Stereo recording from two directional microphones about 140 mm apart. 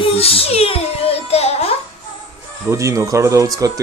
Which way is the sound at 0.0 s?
45° left (ahead or behind).